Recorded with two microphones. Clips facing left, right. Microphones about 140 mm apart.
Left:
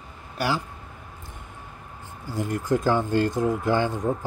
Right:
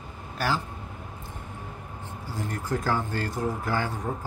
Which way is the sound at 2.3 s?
15° left (ahead or behind).